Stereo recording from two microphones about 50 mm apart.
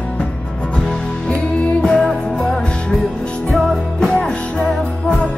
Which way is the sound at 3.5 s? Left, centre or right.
Centre.